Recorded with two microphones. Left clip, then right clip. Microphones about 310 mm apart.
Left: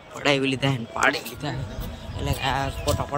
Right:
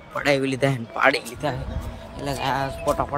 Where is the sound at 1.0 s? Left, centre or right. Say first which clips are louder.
Right 3 dB; right.